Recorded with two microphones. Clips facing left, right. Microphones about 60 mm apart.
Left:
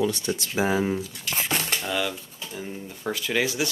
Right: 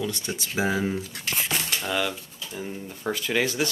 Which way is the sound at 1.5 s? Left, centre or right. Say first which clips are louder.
Left 4 dB; left.